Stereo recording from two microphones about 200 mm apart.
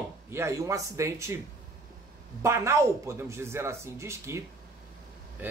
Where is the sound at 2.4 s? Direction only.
15° right (ahead or behind).